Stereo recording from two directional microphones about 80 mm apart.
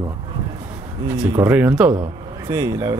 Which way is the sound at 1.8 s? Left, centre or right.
Centre.